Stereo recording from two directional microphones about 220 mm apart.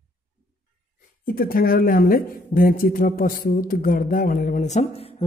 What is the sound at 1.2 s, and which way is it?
Speech, 40° left (ahead or behind).